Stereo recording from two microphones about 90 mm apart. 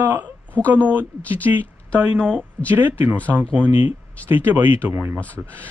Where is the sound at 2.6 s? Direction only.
25° right (ahead or behind).